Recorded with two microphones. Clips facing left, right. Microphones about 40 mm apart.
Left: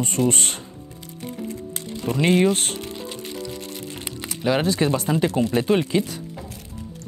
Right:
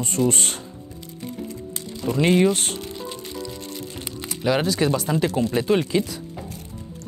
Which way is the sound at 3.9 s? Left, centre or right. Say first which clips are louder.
Even; left.